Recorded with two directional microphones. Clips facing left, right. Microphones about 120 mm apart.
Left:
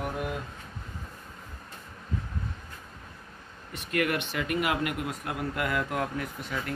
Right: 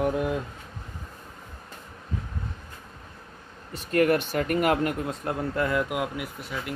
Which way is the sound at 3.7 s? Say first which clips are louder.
Right 7 dB; 40° right (ahead or behind).